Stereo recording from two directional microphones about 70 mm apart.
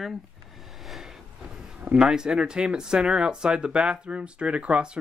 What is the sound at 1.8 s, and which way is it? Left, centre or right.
Speech, centre.